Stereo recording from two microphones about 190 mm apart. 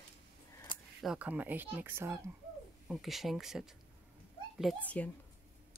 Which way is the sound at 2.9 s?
Centre (ahead or behind).